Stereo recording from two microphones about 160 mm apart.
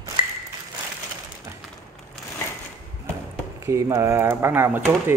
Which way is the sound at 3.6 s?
20° right (ahead or behind).